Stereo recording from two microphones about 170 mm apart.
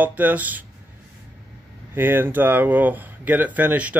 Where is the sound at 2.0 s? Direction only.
10° right (ahead or behind).